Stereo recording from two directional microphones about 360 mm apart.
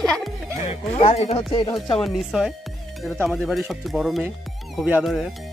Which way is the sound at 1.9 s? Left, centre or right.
Centre.